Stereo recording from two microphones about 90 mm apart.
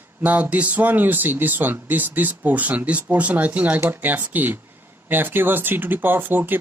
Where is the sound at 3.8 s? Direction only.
30° right (ahead or behind).